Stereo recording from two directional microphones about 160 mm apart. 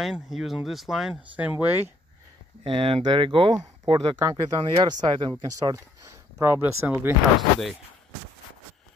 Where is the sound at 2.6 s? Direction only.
35° right (ahead or behind).